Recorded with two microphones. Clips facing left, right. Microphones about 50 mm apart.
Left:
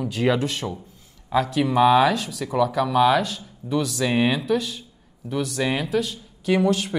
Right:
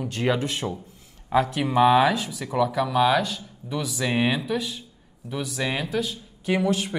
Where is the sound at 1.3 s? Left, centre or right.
Right.